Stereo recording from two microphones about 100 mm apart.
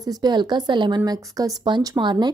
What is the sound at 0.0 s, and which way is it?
Speech, 45° right (ahead or behind).